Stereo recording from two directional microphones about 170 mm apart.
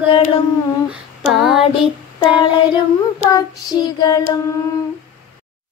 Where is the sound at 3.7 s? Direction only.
20° left (ahead or behind).